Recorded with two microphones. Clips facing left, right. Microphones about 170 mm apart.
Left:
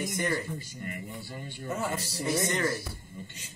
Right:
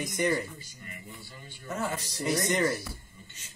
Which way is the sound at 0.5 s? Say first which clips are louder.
Left 9 dB; 55° left (ahead or behind).